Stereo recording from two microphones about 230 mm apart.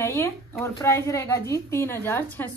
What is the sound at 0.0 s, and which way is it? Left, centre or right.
Speech, centre.